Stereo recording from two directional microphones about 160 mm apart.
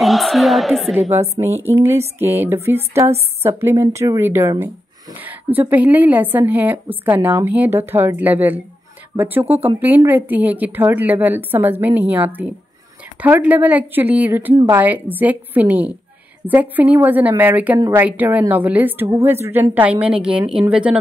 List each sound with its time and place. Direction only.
0.0 s speech: centre (ahead or behind)
1.4 s a woman's voice: 15° right (ahead or behind)
17.7 s speech: 25° right (ahead or behind)
18.0 s a woman's voice: 10° right (ahead or behind)